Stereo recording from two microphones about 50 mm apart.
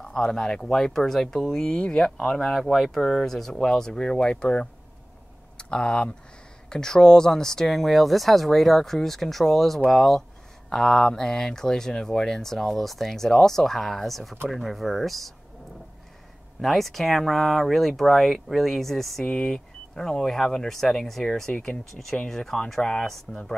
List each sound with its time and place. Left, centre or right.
0.0 s speech: centre
16.6 s speech: centre
19.2 s speech: centre